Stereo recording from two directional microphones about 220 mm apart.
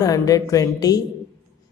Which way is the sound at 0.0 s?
15° left (ahead or behind).